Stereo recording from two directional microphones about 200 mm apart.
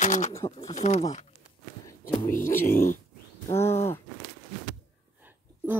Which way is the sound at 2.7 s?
45° left (ahead or behind).